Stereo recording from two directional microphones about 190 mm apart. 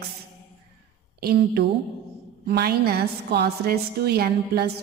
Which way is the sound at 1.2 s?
60° right (ahead or behind).